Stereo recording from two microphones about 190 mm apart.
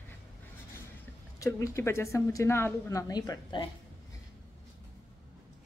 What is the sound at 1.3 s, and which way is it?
A woman's voice, 15° left (ahead or behind).